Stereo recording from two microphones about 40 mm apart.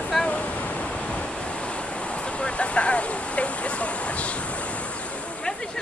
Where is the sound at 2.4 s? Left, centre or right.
Left.